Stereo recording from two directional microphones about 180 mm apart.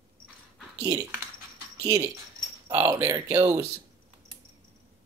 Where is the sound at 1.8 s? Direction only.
15° right (ahead or behind).